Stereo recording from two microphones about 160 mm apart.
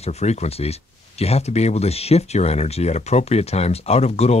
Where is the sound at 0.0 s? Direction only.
45° left (ahead or behind).